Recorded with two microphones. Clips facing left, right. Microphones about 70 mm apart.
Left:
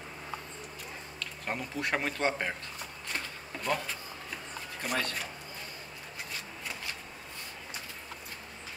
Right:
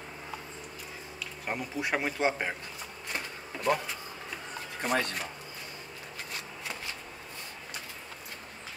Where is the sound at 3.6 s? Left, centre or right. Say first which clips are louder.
Right 4 dB; centre.